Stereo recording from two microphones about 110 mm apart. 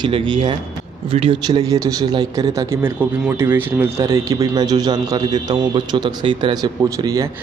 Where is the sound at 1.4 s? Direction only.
35° right (ahead or behind); by 4.0 s 20° right (ahead or behind).